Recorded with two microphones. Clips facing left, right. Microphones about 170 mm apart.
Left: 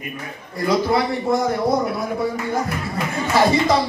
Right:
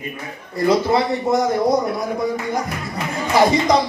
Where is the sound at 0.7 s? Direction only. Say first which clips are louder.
Right 2 dB; 25° right (ahead or behind).